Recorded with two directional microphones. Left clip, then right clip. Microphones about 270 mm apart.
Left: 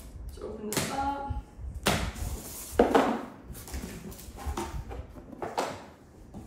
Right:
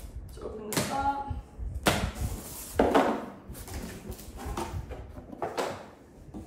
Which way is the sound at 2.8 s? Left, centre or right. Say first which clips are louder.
Left 1 dB; centre.